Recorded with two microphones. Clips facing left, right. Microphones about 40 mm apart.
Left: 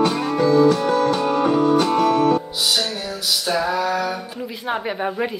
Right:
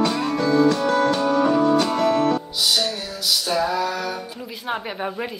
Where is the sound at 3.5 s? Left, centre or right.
Centre.